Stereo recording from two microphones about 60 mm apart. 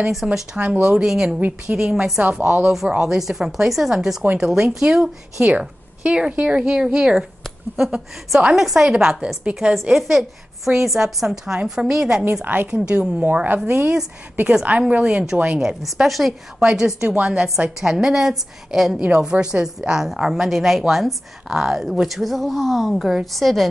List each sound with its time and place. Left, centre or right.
0.0 s a woman's voice: centre
0.6 s speech: centre
1.0 s a woman's voice: centre
1.4 s speech: centre
1.9 s a woman's voice: centre
9.8 s a woman's voice: centre
13.2 s speech: right
15.6 s a woman's voice: centre
18.9 s a woman's voice: centre